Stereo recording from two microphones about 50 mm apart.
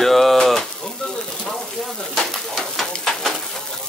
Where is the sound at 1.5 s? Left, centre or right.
Centre.